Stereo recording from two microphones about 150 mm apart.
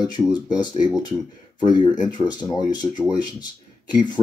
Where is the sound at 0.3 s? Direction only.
30° left (ahead or behind).